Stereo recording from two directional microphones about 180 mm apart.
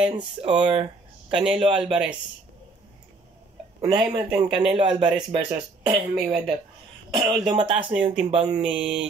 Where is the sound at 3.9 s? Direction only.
20° right (ahead or behind).